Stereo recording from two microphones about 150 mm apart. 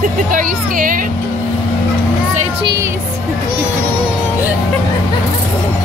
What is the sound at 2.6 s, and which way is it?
Speech, 25° right (ahead or behind).